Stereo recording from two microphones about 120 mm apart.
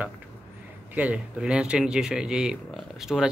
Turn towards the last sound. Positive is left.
turn(degrees=-5)  # may be behind; listen again after turning